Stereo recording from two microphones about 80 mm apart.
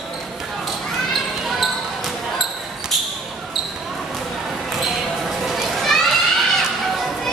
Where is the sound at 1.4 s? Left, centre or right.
Centre.